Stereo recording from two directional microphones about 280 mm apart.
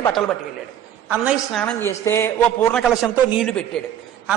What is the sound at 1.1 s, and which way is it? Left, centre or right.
A woman's voice, centre.